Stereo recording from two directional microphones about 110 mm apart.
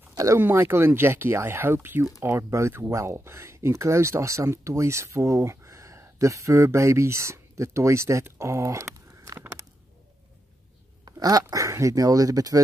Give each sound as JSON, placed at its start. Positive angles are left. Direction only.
{"t": 0.2, "sound": "speech", "side_deg": -25}
{"t": 11.1, "sound": "a sound", "side_deg": -35}
{"t": 11.4, "sound": "speech", "side_deg": -30}